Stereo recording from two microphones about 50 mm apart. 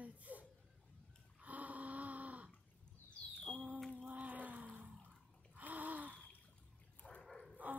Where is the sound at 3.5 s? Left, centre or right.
Right.